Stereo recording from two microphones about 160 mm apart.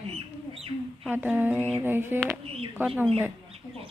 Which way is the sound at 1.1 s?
10° right (ahead or behind).